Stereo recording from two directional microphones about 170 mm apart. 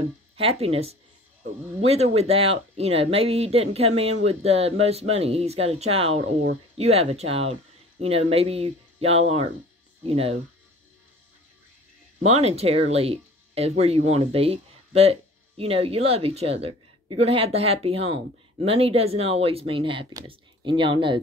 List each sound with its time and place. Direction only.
0.4 s speech: 35° right (ahead or behind)
12.2 s speech: 40° right (ahead or behind)